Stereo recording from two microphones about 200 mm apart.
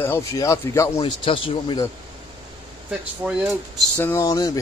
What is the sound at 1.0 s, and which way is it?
Speech, 25° left (ahead or behind).